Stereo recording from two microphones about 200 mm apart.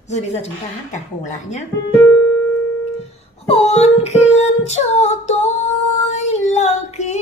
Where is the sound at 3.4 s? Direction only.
30° left (ahead or behind).